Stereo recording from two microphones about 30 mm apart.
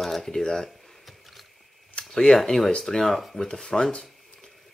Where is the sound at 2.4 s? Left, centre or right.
Centre.